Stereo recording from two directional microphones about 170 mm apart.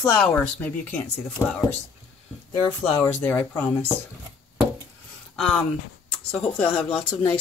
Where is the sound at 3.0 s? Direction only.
10° left (ahead or behind).